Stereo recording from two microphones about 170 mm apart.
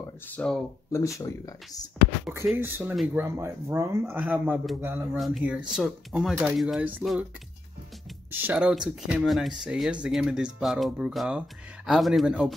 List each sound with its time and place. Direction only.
0.0 s speech: 5° left (ahead or behind)
1.2 s speech: 20° left (ahead or behind)
2.3 s speech: 15° right (ahead or behind)
8.3 s speech: 10° right (ahead or behind)